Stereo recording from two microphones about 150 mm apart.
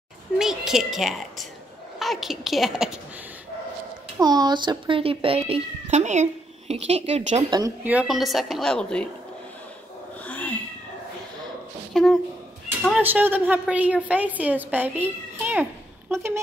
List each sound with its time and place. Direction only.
0.4 s a woman's voice: 5° right (ahead or behind)
4.2 s speech: 25° right (ahead or behind); by 7.4 s 45° right (ahead or behind)
7.8 s a woman's voice: 10° right (ahead or behind)
10.2 s cat: 10° left (ahead or behind)
11.9 s speech: centre (ahead or behind)
13.0 s a child's voice: 10° right (ahead or behind)